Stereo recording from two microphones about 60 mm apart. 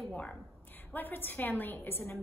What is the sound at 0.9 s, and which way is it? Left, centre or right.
A woman's voice, left.